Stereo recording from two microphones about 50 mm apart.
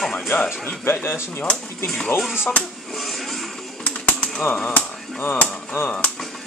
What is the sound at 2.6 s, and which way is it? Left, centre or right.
Typewriter, centre.